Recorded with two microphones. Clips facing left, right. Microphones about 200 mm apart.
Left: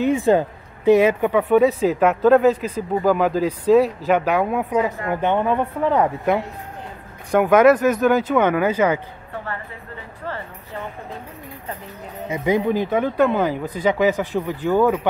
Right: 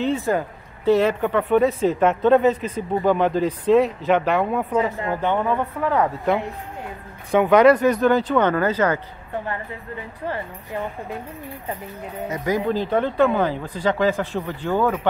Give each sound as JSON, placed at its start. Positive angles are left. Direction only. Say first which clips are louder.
{"t": 0.2, "sound": "a sound", "louder": "left 6 dB", "side_deg": 25}
{"t": 0.9, "sound": "speech", "louder": "left 3 dB", "side_deg": 10}
{"t": 4.8, "sound": "speech", "louder": "left 1 dB", "side_deg": 15}
{"t": 7.2, "sound": "speech", "louder": "even", "side_deg": 0}
{"t": 10.2, "sound": "a woman's voice", "louder": "right 2 dB", "side_deg": -15}
{"t": 12.4, "sound": "speech", "louder": "left 3 dB", "side_deg": 20}